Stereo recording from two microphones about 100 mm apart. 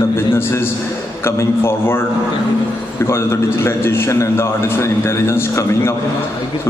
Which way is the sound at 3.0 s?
25° left (ahead or behind).